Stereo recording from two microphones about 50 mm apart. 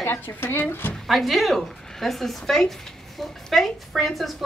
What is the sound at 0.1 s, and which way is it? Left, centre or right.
Speech, left.